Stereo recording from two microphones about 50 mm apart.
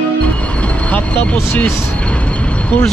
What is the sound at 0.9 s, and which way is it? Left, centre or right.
Speech, left.